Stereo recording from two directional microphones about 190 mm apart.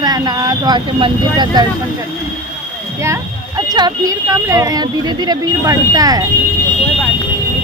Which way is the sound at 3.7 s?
20° right (ahead or behind).